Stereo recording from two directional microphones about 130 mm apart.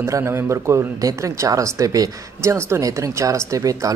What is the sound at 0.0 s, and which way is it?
Speech, 20° right (ahead or behind).